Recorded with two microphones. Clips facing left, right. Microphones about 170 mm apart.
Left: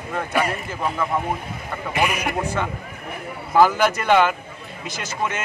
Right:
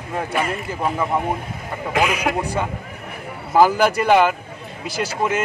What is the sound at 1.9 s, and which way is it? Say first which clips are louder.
Speech: right 3 dB; 90° right.